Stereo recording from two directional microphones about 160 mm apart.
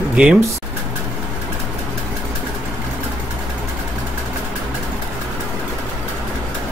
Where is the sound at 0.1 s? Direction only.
5° right (ahead or behind).